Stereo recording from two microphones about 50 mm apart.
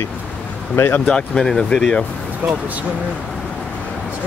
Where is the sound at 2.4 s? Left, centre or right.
Right.